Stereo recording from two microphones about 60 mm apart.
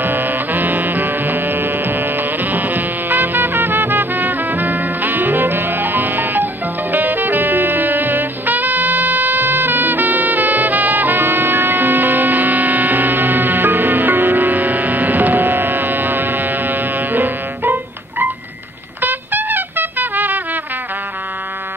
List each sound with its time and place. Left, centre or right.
0.0 s music: right
18.9 s trumpet: right